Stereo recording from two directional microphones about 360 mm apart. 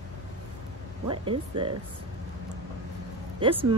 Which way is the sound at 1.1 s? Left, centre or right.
Centre.